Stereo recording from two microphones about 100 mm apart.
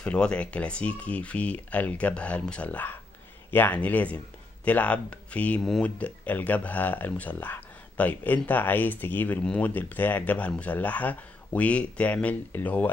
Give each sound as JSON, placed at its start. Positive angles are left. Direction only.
{"t": 0.0, "sound": "speech", "side_deg": 10}
{"t": 5.6, "sound": "speech", "side_deg": 5}
{"t": 5.9, "sound": "speech", "side_deg": 15}